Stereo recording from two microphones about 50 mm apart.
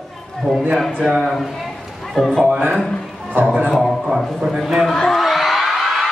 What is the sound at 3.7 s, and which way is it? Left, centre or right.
Speech, centre.